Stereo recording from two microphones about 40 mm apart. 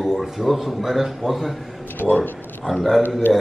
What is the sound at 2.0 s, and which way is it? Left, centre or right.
Speech, left.